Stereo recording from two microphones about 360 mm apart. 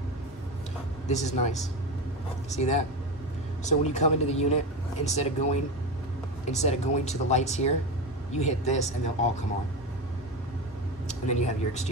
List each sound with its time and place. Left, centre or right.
1.0 s speech: centre
11.1 s speech: centre